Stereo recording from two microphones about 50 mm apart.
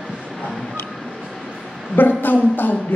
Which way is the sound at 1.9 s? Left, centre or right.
Left.